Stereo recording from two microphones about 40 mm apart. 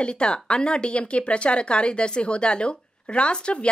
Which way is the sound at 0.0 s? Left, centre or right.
Left.